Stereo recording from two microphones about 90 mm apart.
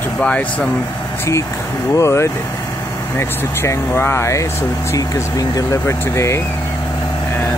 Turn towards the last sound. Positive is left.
turn(degrees=30)  # may be behind; listen again after turning